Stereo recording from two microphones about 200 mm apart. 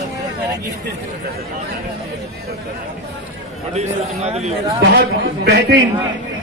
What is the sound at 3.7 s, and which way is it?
Speech, 35° right (ahead or behind).